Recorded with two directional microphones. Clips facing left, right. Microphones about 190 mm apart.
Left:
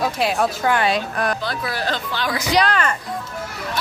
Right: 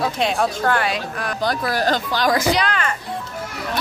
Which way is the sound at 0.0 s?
Centre (ahead or behind).